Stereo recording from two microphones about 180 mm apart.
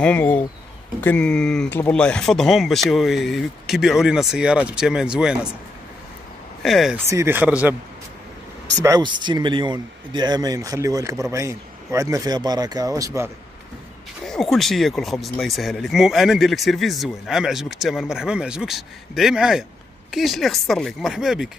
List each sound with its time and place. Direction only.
0.0 s speech: 10° left (ahead or behind)
6.6 s speech: centre (ahead or behind)
7.1 s speech: 15° right (ahead or behind)
8.8 s speech: 25° right (ahead or behind)
14.2 s speech: centre (ahead or behind)